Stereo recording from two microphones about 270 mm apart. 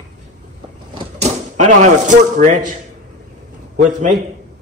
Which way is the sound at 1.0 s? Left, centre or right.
Right.